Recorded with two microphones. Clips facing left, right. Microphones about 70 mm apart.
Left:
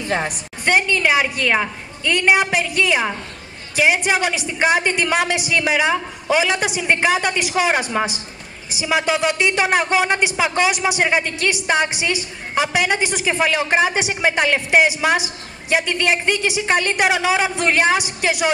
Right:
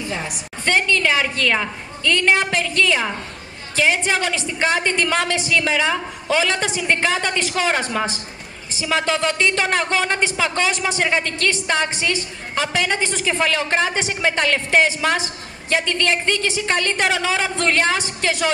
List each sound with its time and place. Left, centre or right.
0.7 s a man's voice: centre